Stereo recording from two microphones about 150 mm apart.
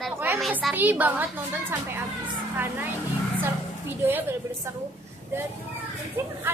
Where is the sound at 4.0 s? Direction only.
15° right (ahead or behind).